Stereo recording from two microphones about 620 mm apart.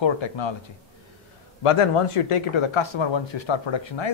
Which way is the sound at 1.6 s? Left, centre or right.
Left.